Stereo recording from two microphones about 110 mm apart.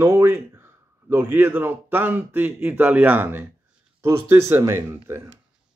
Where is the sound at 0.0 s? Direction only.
25° right (ahead or behind).